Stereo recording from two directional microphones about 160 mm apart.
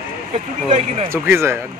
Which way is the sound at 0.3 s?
40° right (ahead or behind).